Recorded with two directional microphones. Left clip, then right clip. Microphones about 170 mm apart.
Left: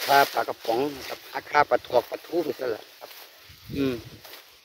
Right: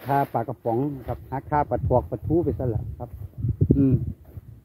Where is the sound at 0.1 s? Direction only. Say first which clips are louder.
Left 3 dB; 20° left (ahead or behind).